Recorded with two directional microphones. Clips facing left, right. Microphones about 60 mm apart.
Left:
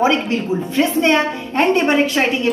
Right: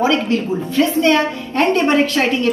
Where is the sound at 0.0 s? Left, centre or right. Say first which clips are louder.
Even; left.